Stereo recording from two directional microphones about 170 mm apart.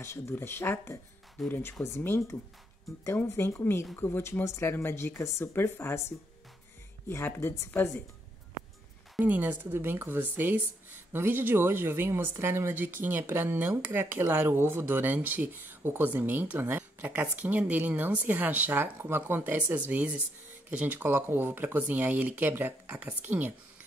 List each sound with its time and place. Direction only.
0.0 s speech: 15° left (ahead or behind)
7.1 s speech: 15° left (ahead or behind)
9.2 s a woman's voice: 10° right (ahead or behind)